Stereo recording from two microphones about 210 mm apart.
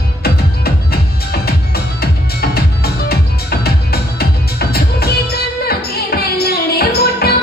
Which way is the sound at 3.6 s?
50° left (ahead or behind).